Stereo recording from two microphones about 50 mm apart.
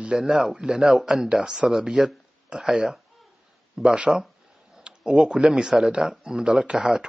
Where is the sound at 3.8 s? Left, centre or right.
Centre.